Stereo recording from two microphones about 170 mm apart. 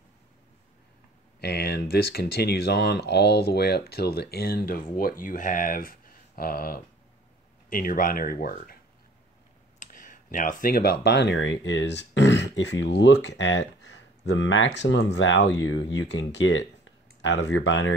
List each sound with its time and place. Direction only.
1.4 s speech: 75° left (ahead or behind); by 8.7 s 60° left (ahead or behind)
9.8 s clicking: 50° left (ahead or behind)
11.1 s speech: 90° left